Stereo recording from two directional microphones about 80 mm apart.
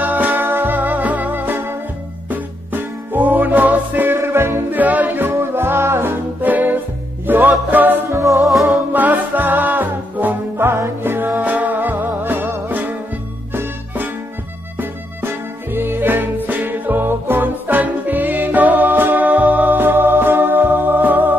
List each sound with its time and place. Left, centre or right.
0.0 s music: right
8.1 s music: right
8.5 s music: centre
8.9 s music: right